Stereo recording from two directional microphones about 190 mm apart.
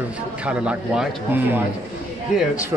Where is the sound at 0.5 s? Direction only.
5° right (ahead or behind).